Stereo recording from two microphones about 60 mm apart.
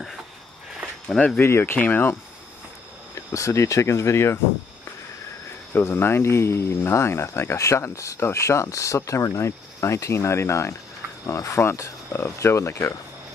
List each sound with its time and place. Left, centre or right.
1.4 s speech: left
3.3 s speech: left
5.7 s speech: left
12.1 s speech: left